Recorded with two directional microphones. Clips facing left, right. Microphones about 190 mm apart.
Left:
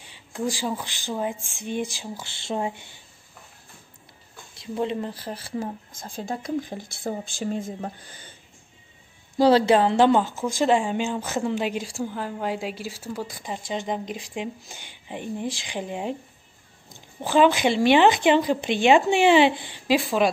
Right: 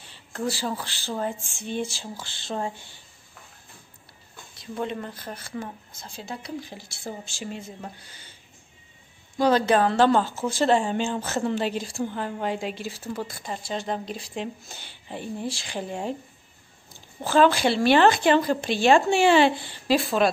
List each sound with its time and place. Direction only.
0.0 s a woman's voice: 10° left (ahead or behind)
4.6 s speech: 25° left (ahead or behind)
5.9 s a woman's voice: 50° left (ahead or behind)
9.7 s a woman's voice: 20° left (ahead or behind)